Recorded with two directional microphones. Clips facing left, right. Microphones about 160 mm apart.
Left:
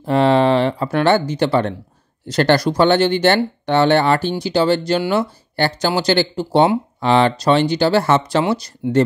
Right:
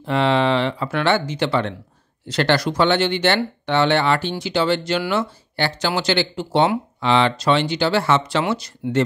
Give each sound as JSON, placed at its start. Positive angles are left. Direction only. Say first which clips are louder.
{"t": 0.0, "sound": "speech", "louder": "left 4 dB", "side_deg": 40}